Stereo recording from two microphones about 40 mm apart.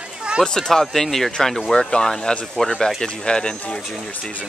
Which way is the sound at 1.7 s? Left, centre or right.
Left.